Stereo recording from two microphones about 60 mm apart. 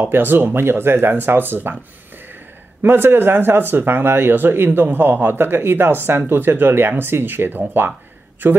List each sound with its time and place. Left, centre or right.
0.0 s speech: right
2.8 s speech: right